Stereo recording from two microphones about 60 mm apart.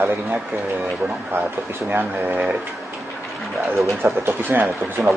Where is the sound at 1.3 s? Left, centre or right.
Right.